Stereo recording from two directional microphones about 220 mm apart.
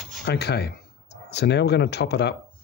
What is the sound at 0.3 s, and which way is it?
Speech, 50° left (ahead or behind).